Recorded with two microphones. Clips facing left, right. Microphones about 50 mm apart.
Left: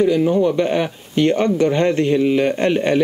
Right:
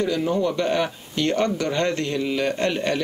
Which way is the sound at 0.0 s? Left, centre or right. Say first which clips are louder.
Left 7 dB; centre.